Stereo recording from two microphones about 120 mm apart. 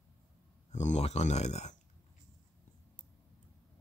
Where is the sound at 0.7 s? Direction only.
70° left (ahead or behind).